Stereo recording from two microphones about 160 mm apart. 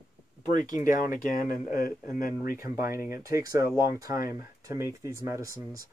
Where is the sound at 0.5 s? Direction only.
55° left (ahead or behind).